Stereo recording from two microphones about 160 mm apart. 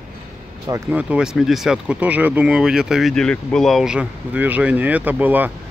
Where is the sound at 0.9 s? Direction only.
10° right (ahead or behind).